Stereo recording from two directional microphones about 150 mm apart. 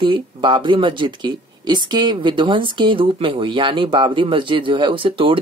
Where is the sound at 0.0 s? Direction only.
35° right (ahead or behind).